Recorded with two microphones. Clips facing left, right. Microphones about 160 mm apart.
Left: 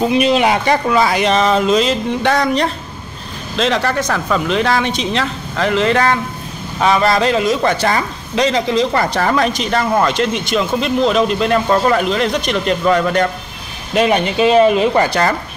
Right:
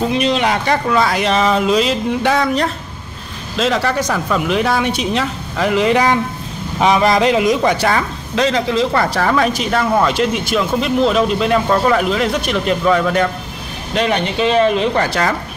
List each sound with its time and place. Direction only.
0.1 s speech: 5° left (ahead or behind); by 7.9 s 10° right (ahead or behind)
7.9 s speech: centre (ahead or behind)
13.9 s speech: 5° left (ahead or behind)